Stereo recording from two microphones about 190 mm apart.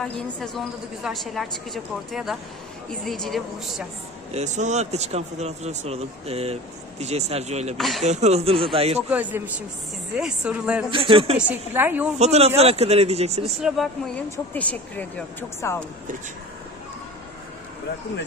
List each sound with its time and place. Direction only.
0.0 s a woman's voice: centre (ahead or behind)
4.3 s speech: 35° right (ahead or behind)
7.7 s a woman's voice: centre (ahead or behind)
8.0 s speech: 35° right (ahead or behind)
9.1 s a woman's voice: 10° right (ahead or behind)
10.9 s speech: 30° right (ahead or behind)
11.3 s a woman's voice: 10° right (ahead or behind)
12.2 s speech: 35° right (ahead or behind)
13.5 s a woman's voice: centre (ahead or behind)